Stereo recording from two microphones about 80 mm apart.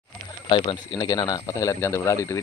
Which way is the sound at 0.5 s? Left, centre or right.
Left.